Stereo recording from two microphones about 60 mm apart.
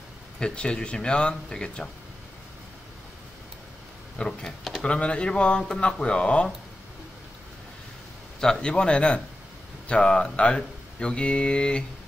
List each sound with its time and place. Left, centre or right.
0.4 s speech: centre
4.2 s speech: centre
4.8 s speech: centre
8.4 s speech: centre